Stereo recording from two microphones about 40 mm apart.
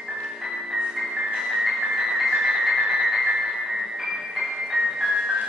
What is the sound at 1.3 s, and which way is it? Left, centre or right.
Music, centre.